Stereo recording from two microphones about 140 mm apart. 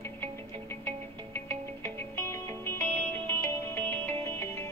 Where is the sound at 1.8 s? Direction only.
20° left (ahead or behind).